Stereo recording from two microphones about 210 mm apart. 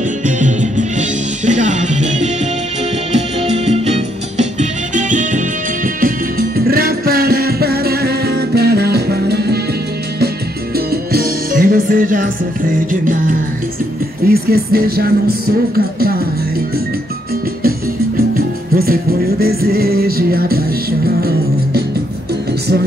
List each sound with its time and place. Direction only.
0.2 s music: 35° right (ahead or behind)
3.3 s music: 30° right (ahead or behind); by 9.6 s 50° right (ahead or behind)
10.9 s music: 45° right (ahead or behind)
17.6 s music: 45° right (ahead or behind)